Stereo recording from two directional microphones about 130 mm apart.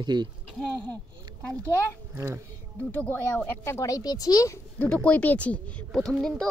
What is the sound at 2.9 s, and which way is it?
Speech, 15° left (ahead or behind).